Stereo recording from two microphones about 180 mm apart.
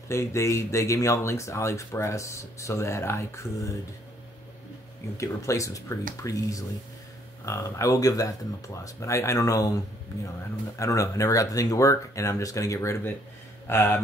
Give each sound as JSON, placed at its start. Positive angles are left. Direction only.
{"t": 0.1, "sound": "speech", "side_deg": 15}
{"t": 5.1, "sound": "speech", "side_deg": 15}
{"t": 10.8, "sound": "speech", "side_deg": 15}